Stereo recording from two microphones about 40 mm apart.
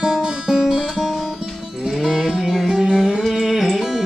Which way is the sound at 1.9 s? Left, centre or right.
Centre.